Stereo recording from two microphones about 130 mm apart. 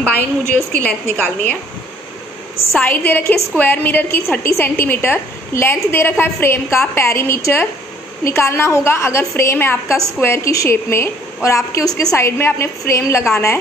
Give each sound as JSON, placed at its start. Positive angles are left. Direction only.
{"t": 0.0, "sound": "a woman's voice", "side_deg": 15}
{"t": 2.8, "sound": "a woman's voice", "side_deg": 15}